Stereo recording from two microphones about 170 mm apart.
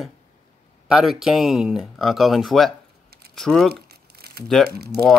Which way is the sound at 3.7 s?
65° right (ahead or behind).